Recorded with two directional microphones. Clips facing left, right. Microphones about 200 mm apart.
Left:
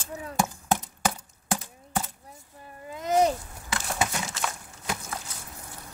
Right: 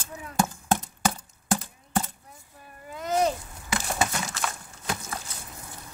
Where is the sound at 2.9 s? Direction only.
20° left (ahead or behind).